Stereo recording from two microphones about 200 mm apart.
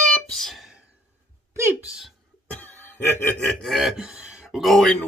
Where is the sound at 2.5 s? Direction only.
10° left (ahead or behind).